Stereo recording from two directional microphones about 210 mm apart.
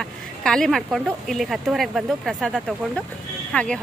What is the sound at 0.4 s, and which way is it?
Speech, 5° left (ahead or behind).